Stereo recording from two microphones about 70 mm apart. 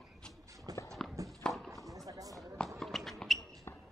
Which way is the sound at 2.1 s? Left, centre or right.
Right.